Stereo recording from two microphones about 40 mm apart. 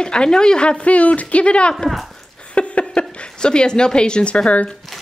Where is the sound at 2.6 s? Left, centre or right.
Left.